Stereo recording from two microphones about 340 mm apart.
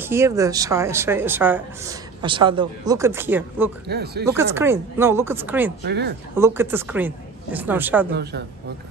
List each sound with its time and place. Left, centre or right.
0.0 s speech: centre
3.8 s speech: right
4.3 s speech: centre
5.9 s speech: right
6.3 s a woman's voice: centre
8.1 s speech: right